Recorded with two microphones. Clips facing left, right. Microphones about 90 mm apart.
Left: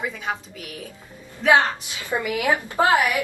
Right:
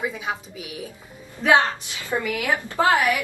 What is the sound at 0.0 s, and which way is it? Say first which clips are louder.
Speech: even; 5° right (ahead or behind).